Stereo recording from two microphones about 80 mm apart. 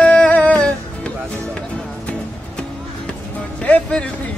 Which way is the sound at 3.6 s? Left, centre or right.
Centre.